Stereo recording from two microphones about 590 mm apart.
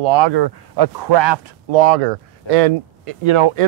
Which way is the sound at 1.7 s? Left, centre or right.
Right.